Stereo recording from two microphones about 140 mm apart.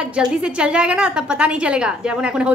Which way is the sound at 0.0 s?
5° right (ahead or behind).